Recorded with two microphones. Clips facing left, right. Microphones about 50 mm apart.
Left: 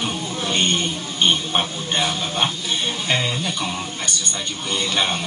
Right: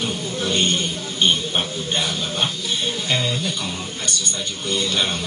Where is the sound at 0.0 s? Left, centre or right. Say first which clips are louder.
Even; centre.